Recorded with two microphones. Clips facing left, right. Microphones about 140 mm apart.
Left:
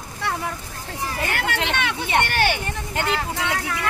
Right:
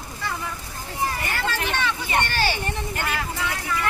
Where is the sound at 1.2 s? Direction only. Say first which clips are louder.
Left 2 dB; 70° left (ahead or behind).